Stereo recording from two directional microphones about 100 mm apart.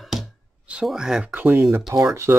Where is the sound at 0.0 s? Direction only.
Centre (ahead or behind).